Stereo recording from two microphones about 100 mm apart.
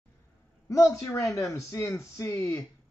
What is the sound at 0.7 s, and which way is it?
Speech, 30° left (ahead or behind).